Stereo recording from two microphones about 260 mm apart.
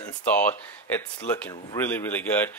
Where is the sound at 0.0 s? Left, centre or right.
Centre.